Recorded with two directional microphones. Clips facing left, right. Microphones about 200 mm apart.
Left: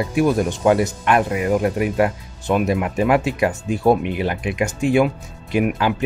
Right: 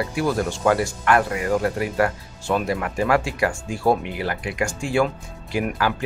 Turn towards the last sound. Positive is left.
turn(degrees=20)  # may be behind; listen again after turning